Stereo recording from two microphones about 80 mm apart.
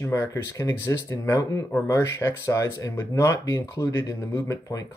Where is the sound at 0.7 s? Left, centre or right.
Left.